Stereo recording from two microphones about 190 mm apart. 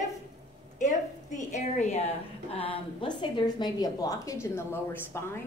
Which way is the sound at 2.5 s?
30° left (ahead or behind).